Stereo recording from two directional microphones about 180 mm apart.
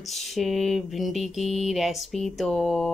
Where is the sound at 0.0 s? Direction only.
Centre (ahead or behind).